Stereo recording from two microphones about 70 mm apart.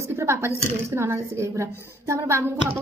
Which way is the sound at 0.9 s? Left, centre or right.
Right.